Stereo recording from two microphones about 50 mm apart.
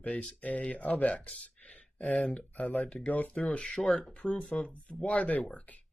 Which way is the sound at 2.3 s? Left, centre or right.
Left.